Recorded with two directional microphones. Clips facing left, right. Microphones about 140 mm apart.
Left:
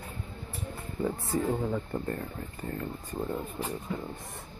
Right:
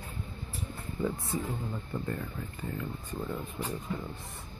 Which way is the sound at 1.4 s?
70° left (ahead or behind).